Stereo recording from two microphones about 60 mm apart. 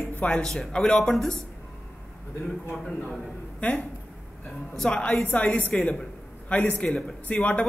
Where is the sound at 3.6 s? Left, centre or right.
Left.